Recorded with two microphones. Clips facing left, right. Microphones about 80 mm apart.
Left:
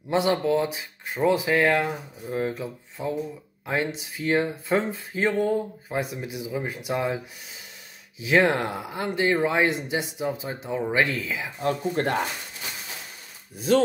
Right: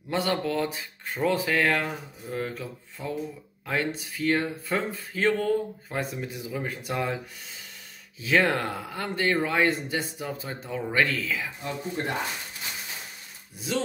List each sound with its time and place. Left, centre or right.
0.1 s speech: left
8.2 s speech: centre
11.6 s speech: left